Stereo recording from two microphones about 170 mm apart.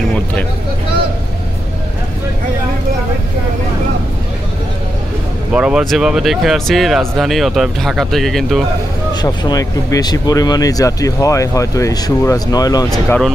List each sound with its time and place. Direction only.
5.5 s speech: 5° right (ahead or behind)
9.1 s speech: 25° left (ahead or behind)
12.9 s speech: centre (ahead or behind)